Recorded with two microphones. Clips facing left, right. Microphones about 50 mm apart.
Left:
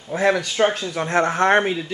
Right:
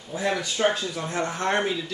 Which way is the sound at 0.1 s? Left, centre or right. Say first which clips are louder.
Left 7 dB; left.